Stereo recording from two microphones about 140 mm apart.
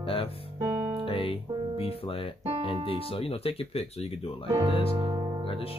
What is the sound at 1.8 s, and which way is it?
Speech, 45° left (ahead or behind).